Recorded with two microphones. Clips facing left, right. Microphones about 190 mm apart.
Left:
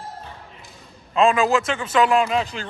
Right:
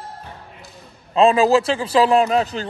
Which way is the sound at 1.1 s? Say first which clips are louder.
Right 4 dB; 35° right (ahead or behind).